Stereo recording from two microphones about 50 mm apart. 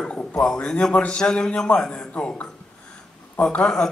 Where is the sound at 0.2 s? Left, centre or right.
Left.